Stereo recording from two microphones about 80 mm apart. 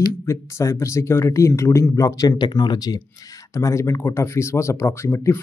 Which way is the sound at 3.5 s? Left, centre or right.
Left.